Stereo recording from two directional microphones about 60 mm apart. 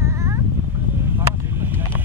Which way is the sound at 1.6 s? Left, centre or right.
Right.